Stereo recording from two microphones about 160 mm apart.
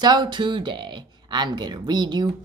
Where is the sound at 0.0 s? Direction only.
30° right (ahead or behind).